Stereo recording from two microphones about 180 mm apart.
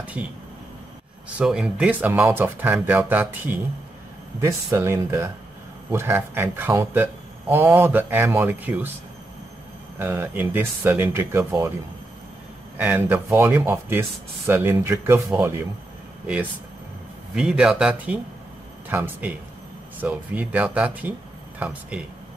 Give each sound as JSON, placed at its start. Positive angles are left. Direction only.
{"t": 0.2, "sound": "speech", "side_deg": -10}
{"t": 1.4, "sound": "speech", "side_deg": -5}
{"t": 9.9, "sound": "speech", "side_deg": -15}
{"t": 12.7, "sound": "speech", "side_deg": -10}
{"t": 17.4, "sound": "speech", "side_deg": -5}